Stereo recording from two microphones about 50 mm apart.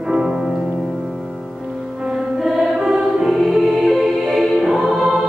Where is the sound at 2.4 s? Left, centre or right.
Centre.